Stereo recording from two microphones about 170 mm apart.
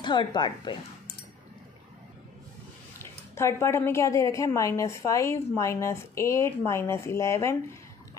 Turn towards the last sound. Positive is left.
turn(degrees=15)  # may be behind; listen again after turning